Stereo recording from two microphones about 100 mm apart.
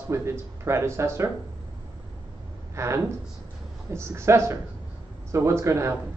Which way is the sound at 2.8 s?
30° right (ahead or behind).